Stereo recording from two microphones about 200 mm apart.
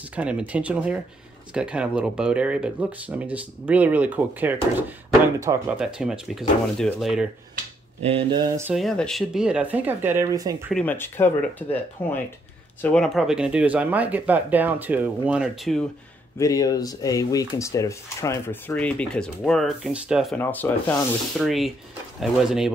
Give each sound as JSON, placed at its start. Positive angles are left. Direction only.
{"t": 0.1, "sound": "speech", "side_deg": -5}
{"t": 8.0, "sound": "speech", "side_deg": -30}
{"t": 8.7, "sound": "speech", "side_deg": 0}
{"t": 10.7, "sound": "speech", "side_deg": 5}
{"t": 16.3, "sound": "speech", "side_deg": 15}
{"t": 20.3, "sound": "speech", "side_deg": 10}